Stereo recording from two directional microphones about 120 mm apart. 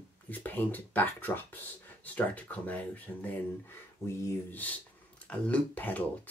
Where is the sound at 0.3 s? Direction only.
15° left (ahead or behind).